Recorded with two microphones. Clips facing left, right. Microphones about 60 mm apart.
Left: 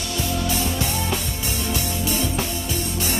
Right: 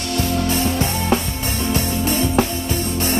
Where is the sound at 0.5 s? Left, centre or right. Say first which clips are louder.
Right 4 dB; right.